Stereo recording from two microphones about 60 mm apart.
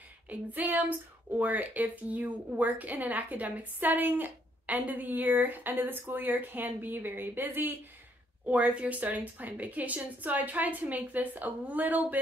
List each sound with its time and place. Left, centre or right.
0.3 s a woman's voice: right
8.5 s a woman's voice: right